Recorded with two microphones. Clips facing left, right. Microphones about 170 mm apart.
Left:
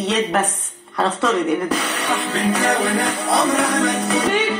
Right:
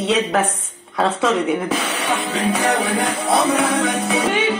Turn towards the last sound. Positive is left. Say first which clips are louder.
# even
turn(degrees=0)  # may be behind; listen again after turning